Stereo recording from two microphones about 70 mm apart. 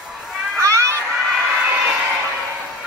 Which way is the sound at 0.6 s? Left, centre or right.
Right.